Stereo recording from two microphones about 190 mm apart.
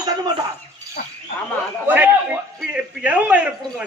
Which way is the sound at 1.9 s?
10° right (ahead or behind).